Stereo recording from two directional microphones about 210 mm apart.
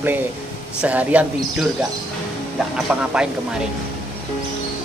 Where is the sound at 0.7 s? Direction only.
5° right (ahead or behind).